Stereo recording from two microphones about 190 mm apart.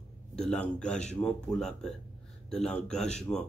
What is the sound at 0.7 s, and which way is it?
Speech, 5° left (ahead or behind).